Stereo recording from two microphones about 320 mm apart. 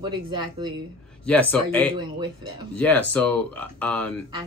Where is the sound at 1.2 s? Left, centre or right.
Centre.